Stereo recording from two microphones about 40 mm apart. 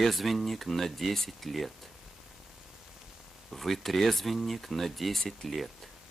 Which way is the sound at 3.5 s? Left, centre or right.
Centre.